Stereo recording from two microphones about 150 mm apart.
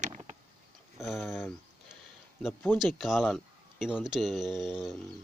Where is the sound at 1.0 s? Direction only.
Centre (ahead or behind).